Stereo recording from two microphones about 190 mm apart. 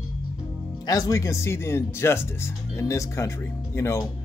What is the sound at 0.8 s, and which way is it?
Speech, 20° left (ahead or behind).